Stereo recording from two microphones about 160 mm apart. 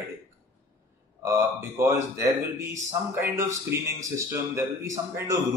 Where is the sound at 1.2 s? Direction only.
15° right (ahead or behind).